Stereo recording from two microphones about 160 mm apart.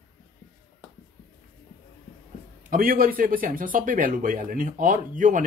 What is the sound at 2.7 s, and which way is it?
Speech, 65° right (ahead or behind).